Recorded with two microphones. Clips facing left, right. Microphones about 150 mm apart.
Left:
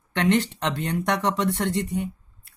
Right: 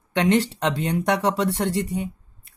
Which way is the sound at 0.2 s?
10° right (ahead or behind).